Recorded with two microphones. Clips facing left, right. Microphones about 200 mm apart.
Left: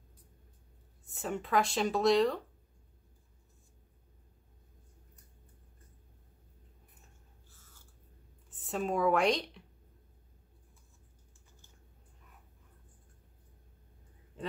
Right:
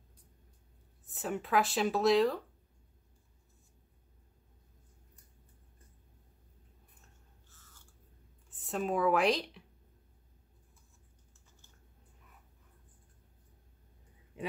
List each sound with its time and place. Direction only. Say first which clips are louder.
1.0 s speech: even; centre (ahead or behind)
8.5 s speech: even; centre (ahead or behind)